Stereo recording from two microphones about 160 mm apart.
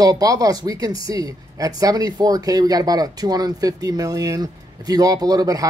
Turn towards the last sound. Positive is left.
turn(degrees=-25)  # may be behind; listen again after turning